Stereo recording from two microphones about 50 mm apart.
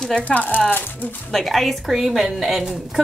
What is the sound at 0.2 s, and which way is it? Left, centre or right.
Speech, left.